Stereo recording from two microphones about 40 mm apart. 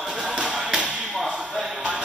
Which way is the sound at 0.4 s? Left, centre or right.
Centre.